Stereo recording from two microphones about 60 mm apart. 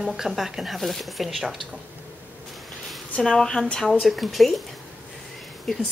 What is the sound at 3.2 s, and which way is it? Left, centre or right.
Speech, centre.